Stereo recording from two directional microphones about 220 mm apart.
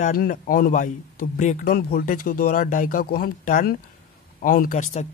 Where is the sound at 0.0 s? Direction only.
40° left (ahead or behind).